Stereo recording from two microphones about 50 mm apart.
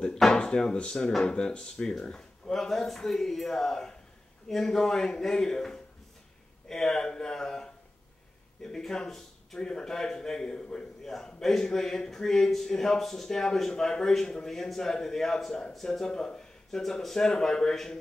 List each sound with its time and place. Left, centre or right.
0.4 s speech: centre